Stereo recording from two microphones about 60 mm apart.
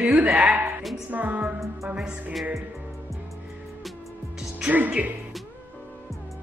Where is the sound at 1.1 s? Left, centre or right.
Right.